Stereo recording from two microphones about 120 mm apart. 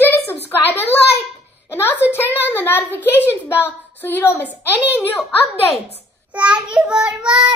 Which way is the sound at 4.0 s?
15° left (ahead or behind).